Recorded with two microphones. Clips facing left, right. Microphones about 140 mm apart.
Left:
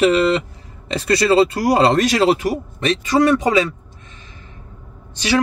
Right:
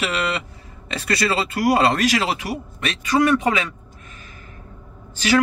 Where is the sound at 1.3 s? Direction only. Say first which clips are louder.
Left 5 dB; 30° left (ahead or behind).